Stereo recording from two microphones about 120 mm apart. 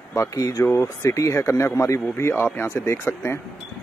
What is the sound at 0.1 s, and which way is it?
Speech, 25° left (ahead or behind).